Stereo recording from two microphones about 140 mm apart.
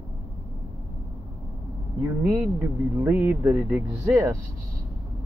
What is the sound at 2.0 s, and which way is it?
Speech, 20° right (ahead or behind).